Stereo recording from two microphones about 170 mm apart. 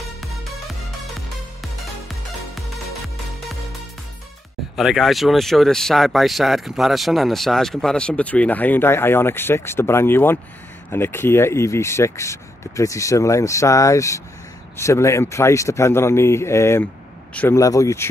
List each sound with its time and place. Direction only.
4.7 s speech: centre (ahead or behind)
17.6 s speech: 20° left (ahead or behind)